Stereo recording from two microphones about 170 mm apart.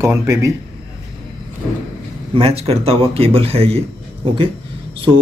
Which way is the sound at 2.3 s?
35° right (ahead or behind).